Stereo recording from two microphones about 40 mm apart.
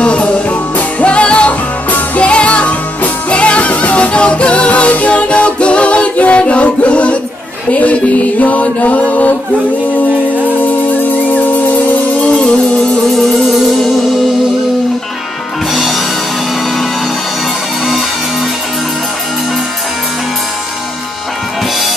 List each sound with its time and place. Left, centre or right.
0.0 s music: left
10.6 s music: left
13.1 s music: centre
15.7 s music: centre